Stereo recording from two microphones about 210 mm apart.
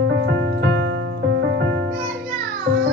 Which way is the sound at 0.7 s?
65° right (ahead or behind).